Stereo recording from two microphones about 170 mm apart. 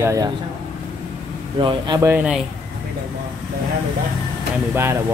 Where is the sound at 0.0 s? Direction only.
20° right (ahead or behind).